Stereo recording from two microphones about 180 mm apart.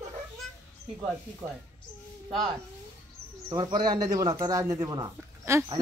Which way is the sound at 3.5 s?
25° right (ahead or behind).